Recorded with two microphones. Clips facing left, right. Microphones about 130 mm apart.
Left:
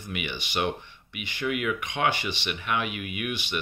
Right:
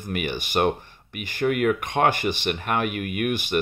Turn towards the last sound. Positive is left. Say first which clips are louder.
# right 7 dB
turn(degrees=-50)  # may be behind; listen again after turning